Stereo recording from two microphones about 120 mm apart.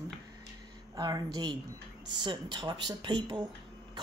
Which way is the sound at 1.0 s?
35° right (ahead or behind).